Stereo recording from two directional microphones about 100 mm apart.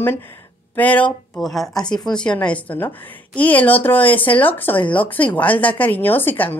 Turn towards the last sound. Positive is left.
turn(degrees=20)  # may be behind; listen again after turning